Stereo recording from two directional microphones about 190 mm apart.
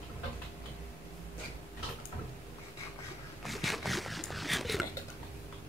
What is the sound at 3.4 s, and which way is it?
Pig, centre (ahead or behind).